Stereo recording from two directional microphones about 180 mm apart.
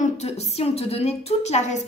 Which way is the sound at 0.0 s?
35° left (ahead or behind).